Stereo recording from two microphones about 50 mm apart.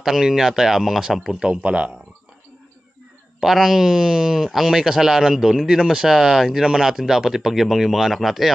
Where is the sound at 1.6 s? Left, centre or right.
Right.